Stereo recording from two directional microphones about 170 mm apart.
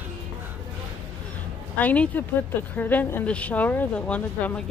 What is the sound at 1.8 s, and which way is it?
A woman's voice, 10° left (ahead or behind).